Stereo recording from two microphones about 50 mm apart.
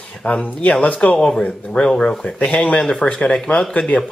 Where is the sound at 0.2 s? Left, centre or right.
Left.